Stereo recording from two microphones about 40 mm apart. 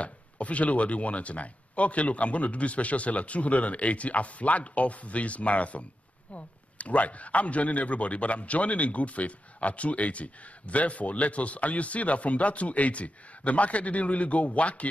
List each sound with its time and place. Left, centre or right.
0.0 s a man's voice: left